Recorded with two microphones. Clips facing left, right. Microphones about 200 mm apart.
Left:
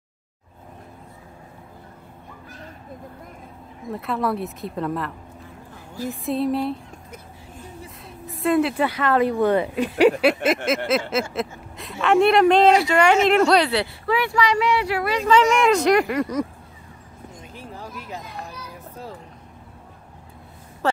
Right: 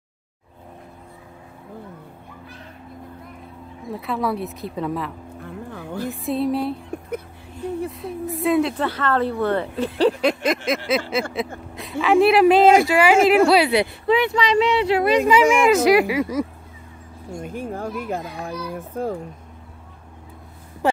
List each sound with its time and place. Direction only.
3.9 s speech: centre (ahead or behind)
5.4 s music: 60° right (ahead or behind)
6.0 s speech: centre (ahead or behind)
8.4 s speech: centre (ahead or behind)
8.7 s speech: 15° left (ahead or behind); by 15.4 s 15° right (ahead or behind)
15.6 s speech: 5° right (ahead or behind)
17.4 s speech: 50° right (ahead or behind)
20.8 s a sound: 15° right (ahead or behind)